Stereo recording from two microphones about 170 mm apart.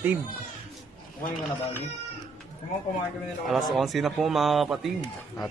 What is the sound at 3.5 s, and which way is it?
A man's voice, centre (ahead or behind).